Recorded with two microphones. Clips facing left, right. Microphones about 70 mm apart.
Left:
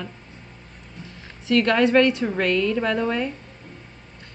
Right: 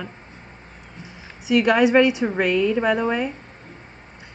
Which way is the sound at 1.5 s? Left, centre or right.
Centre.